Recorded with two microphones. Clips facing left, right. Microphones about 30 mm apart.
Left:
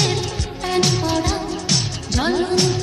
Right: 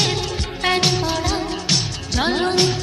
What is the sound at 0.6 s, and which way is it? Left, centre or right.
Music, right.